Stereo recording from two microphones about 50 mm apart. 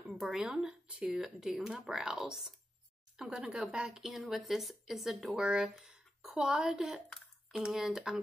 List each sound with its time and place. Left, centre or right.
0.2 s a woman's voice: centre
0.8 s speech: right
1.1 s a woman's voice: centre
5.4 s a woman's voice: centre